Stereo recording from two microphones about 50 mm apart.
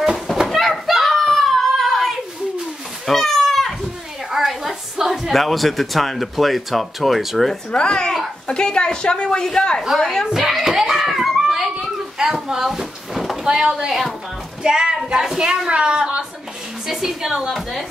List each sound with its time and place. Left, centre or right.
0.0 s a sound: centre
3.1 s children playing: centre
4.3 s a woman's voice: centre
7.7 s speech: centre
10.3 s hands: centre
11.8 s a sound: centre
13.4 s a woman's voice: centre
14.6 s a woman's voice: centre
16.8 s a woman's voice: centre
17.5 s speech: centre